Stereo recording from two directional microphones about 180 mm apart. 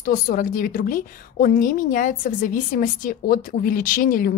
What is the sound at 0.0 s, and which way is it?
A woman's voice, 50° left (ahead or behind).